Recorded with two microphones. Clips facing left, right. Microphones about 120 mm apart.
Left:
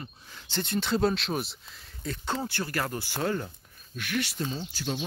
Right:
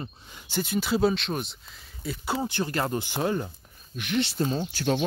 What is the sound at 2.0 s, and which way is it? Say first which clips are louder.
Speech: right 3 dB; 10° right (ahead or behind).